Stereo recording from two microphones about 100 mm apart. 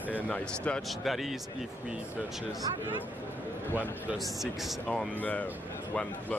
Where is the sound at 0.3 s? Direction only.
10° left (ahead or behind).